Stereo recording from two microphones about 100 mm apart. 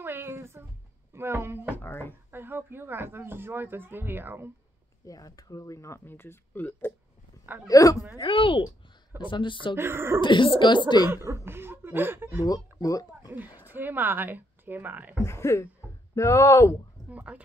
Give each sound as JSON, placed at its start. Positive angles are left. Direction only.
{"t": 0.0, "sound": "music", "side_deg": -25}
{"t": 1.1, "sound": "speech", "side_deg": -25}
{"t": 1.8, "sound": "speech", "side_deg": 20}
{"t": 2.3, "sound": "speech", "side_deg": -20}
{"t": 5.0, "sound": "speech", "side_deg": 35}
{"t": 7.6, "sound": "a woman's voice", "side_deg": 35}
{"t": 8.2, "sound": "speech", "side_deg": 60}
{"t": 9.8, "sound": "speech", "side_deg": -25}
{"t": 10.2, "sound": "speech", "side_deg": 55}
{"t": 11.1, "sound": "speech", "side_deg": -25}
{"t": 12.8, "sound": "speech", "side_deg": 35}
{"t": 13.6, "sound": "speech", "side_deg": -20}
{"t": 15.2, "sound": "speech", "side_deg": 30}
{"t": 17.1, "sound": "speech", "side_deg": -10}